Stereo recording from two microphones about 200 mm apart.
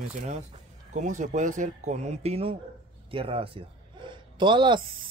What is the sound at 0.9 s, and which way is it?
Speech, 40° right (ahead or behind).